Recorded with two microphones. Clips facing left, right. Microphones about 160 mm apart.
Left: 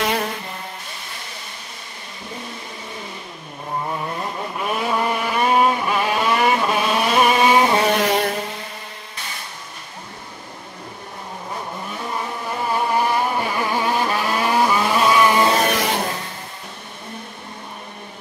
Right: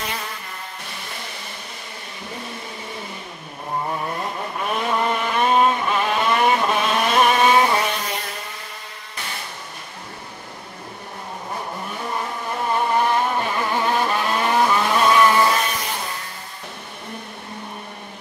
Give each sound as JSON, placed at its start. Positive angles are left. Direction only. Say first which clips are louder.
{"t": 4.6, "sound": "vehicle", "louder": "left 1 dB", "side_deg": 5}
{"t": 7.9, "sound": "vehicle", "louder": "left 10 dB", "side_deg": 75}
{"t": 12.5, "sound": "vehicle", "louder": "even", "side_deg": 5}
{"t": 15.7, "sound": "a sound", "louder": "left 7 dB", "side_deg": 80}